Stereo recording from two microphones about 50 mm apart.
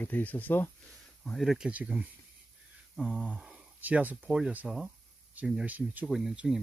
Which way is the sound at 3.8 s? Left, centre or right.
Right.